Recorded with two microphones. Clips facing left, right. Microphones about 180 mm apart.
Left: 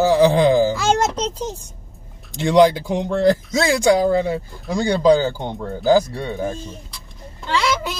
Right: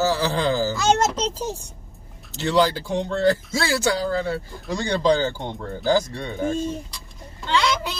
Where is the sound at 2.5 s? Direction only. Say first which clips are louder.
Left 6 dB; 15° left (ahead or behind).